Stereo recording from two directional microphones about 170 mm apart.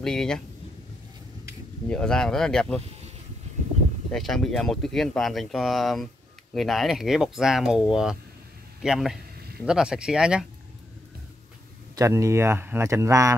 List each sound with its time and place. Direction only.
0.0 s speech: 5° left (ahead or behind)
1.9 s speech: 5° left (ahead or behind)
4.1 s speech: 5° left (ahead or behind)
11.9 s speech: 20° right (ahead or behind)